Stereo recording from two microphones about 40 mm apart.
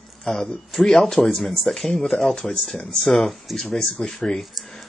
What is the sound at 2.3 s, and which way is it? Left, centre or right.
Speech, centre.